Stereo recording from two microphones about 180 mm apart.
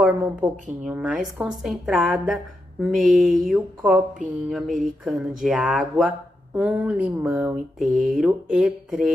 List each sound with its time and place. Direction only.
0.0 s a woman's voice: 10° right (ahead or behind)
7.8 s speech: 45° right (ahead or behind)
8.1 s a woman's voice: centre (ahead or behind)